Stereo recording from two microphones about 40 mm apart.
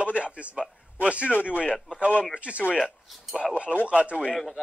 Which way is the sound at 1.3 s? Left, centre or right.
Left.